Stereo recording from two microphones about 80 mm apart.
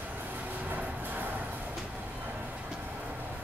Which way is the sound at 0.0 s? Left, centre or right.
Right.